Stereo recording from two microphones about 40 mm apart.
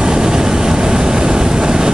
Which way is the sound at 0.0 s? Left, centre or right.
Centre.